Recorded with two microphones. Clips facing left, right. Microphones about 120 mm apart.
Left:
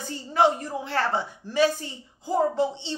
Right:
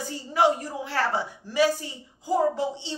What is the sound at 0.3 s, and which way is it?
A woman's voice, 10° right (ahead or behind).